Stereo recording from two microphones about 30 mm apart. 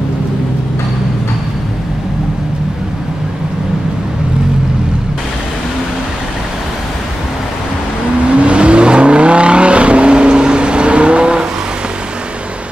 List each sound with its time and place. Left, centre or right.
8.4 s vehicle: right